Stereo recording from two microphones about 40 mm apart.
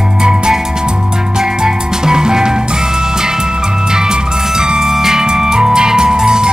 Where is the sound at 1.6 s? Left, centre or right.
Centre.